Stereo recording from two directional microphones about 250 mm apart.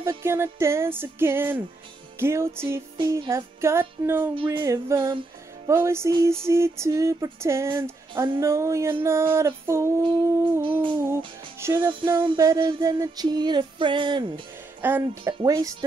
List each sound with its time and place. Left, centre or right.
0.0 s music: centre
14.8 s music: centre